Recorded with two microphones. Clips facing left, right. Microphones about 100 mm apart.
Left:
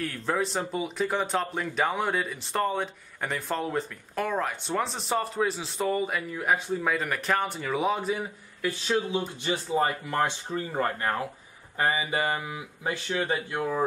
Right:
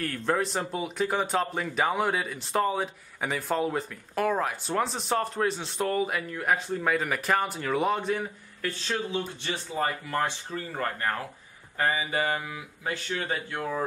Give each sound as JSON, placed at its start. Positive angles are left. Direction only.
{"t": 0.0, "sound": "speech", "side_deg": 0}
{"t": 8.6, "sound": "speech", "side_deg": 15}